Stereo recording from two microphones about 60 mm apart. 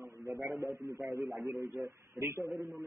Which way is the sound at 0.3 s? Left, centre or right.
Right.